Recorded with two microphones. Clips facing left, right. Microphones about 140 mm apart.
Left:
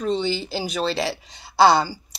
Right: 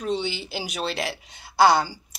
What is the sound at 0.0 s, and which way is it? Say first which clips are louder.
Speech: left 4 dB; 10° right (ahead or behind).